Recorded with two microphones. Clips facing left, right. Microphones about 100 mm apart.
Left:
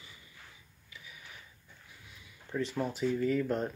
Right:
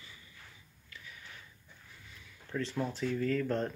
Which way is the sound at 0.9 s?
10° left (ahead or behind).